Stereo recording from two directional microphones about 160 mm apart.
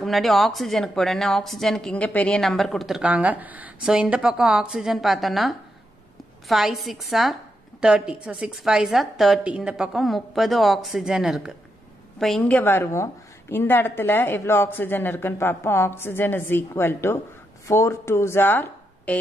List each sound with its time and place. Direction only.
0.0 s a woman's voice: centre (ahead or behind)